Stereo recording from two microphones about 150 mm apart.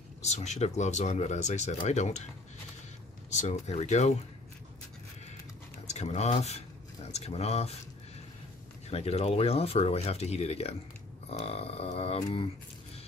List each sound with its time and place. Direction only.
0.2 s speech: 50° left (ahead or behind)
3.3 s speech: 50° left (ahead or behind)
5.9 s speech: 45° left (ahead or behind)
8.9 s speech: 45° left (ahead or behind)